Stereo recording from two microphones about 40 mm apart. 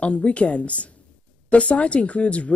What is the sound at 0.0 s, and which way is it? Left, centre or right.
Speech, left.